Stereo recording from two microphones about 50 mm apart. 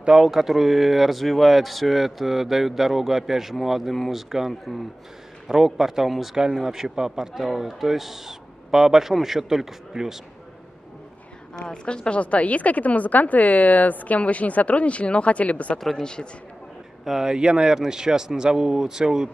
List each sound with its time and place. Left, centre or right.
0.2 s speech: centre
6.3 s speech: centre
11.5 s a woman's voice: centre
16.0 s a man's voice: centre
17.0 s speech: centre